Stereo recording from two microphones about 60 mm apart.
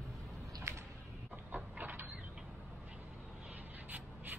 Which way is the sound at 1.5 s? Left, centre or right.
Right.